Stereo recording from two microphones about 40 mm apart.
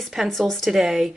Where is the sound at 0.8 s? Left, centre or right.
Centre.